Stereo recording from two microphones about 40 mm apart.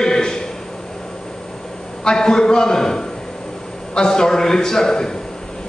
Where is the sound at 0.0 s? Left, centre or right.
Centre.